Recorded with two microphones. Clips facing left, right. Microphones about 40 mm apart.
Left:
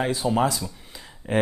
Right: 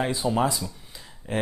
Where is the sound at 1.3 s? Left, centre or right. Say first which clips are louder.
Left 5 dB; left.